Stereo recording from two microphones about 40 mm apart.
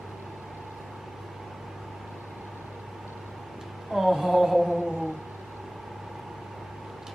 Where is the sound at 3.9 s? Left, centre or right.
Centre.